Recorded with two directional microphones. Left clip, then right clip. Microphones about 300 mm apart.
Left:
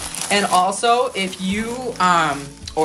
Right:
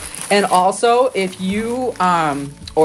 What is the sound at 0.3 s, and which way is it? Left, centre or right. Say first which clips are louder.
Speech: right 3 dB; centre.